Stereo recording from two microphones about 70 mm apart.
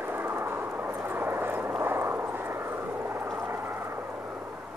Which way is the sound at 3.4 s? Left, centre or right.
Right.